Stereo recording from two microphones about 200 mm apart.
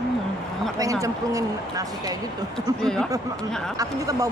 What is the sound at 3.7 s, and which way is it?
Speech, 15° right (ahead or behind).